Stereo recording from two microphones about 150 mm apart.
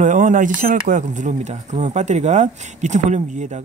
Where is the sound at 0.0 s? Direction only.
55° right (ahead or behind).